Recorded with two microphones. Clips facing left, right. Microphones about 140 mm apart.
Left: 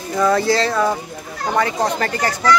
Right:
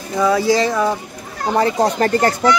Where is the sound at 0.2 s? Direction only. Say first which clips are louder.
Right 1 dB; 10° right (ahead or behind).